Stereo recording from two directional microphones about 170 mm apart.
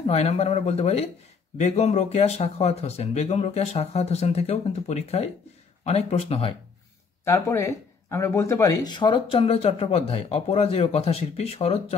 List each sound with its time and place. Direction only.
0.0 s speech: 35° left (ahead or behind)
7.2 s speech: 15° left (ahead or behind); by 11.8 s 35° left (ahead or behind)